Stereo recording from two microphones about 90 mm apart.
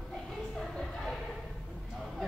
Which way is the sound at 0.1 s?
5° left (ahead or behind).